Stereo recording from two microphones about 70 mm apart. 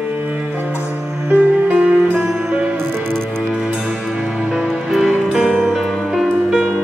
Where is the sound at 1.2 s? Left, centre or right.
Right.